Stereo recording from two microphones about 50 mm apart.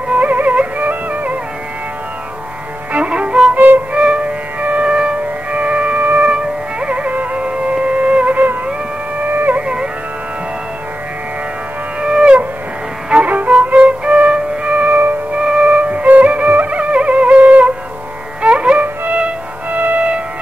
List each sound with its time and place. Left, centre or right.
0.1 s music: right
2.9 s music: right
3.5 s music: right
3.9 s music: right
6.3 s music: centre; by 9.6 s right
9.6 s music: centre
12.0 s music: centre
13.1 s music: right